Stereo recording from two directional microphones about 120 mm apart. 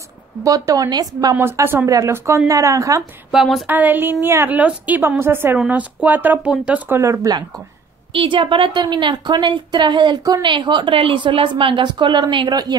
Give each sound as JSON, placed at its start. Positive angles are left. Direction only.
{"t": 0.4, "sound": "a woman's voice", "side_deg": -30}
{"t": 1.3, "sound": "speech", "side_deg": -20}
{"t": 3.3, "sound": "a sound", "side_deg": 0}
{"t": 3.6, "sound": "a woman's voice", "side_deg": -15}
{"t": 6.9, "sound": "speech", "side_deg": -25}
{"t": 8.1, "sound": "a woman's voice", "side_deg": -45}